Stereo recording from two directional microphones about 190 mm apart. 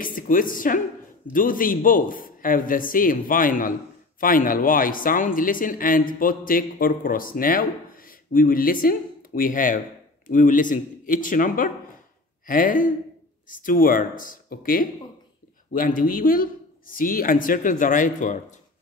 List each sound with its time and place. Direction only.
0.0 s speech: 45° left (ahead or behind)